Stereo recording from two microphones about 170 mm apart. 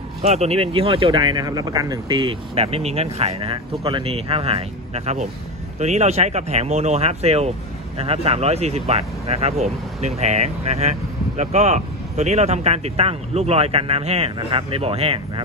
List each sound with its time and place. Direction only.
0.2 s speech: 40° right (ahead or behind)